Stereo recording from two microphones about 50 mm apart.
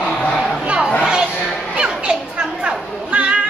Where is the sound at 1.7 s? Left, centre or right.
Centre.